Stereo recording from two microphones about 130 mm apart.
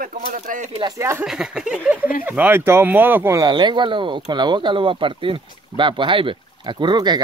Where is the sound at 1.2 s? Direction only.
5° right (ahead or behind).